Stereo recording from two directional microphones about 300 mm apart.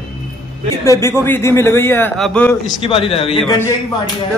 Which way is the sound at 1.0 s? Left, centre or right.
Centre.